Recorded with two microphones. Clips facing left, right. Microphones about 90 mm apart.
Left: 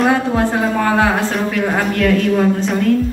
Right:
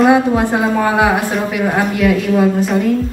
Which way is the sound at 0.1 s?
15° right (ahead or behind).